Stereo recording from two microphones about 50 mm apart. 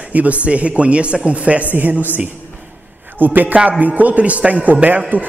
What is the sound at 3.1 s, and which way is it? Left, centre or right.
A man's voice, right.